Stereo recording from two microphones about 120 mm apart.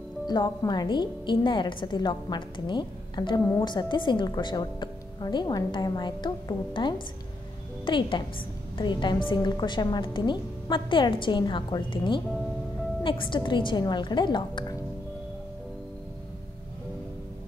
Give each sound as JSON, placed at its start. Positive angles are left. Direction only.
{"t": 0.3, "sound": "a woman's voice", "side_deg": 35}